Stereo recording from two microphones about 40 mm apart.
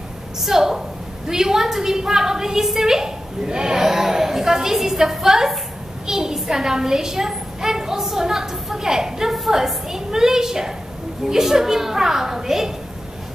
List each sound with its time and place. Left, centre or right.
0.4 s a woman's voice: centre